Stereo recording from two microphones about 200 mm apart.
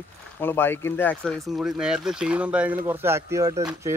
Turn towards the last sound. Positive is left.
turn(degrees=-15)  # may be behind; listen again after turning